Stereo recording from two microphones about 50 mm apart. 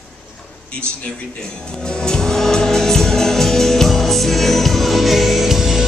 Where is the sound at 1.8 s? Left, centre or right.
Centre.